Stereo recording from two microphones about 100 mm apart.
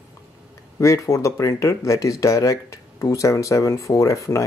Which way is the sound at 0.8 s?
30° left (ahead or behind).